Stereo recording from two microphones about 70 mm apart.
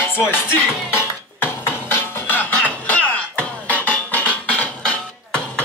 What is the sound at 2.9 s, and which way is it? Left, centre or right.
Music, centre.